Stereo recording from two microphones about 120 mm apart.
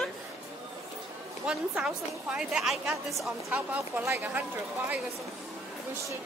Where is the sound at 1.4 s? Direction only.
5° right (ahead or behind).